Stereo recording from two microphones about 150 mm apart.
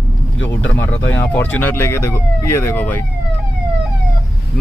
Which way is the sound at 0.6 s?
10° left (ahead or behind).